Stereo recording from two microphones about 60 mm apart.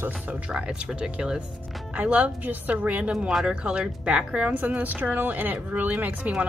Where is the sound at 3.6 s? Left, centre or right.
Centre.